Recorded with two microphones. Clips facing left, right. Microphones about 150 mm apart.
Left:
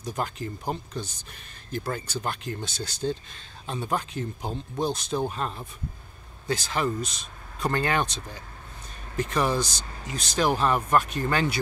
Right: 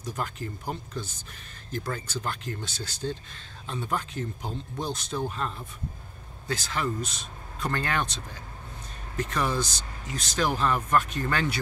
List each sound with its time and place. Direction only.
0.1 s speech: 25° left (ahead or behind)
0.9 s speech: 70° left (ahead or behind)
2.0 s speech: 15° left (ahead or behind)
9.2 s speech: 15° left (ahead or behind)